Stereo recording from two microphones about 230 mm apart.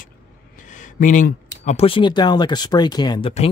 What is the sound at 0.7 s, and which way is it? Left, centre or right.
Speech, left.